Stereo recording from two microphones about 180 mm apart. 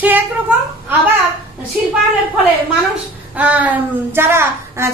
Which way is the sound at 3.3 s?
10° right (ahead or behind).